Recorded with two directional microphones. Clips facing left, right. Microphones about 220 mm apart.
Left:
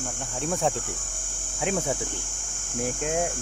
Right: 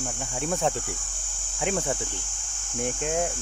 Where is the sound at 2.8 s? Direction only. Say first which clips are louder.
Even; 5° left (ahead or behind).